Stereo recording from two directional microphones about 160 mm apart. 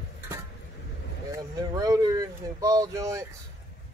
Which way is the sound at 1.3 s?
20° right (ahead or behind).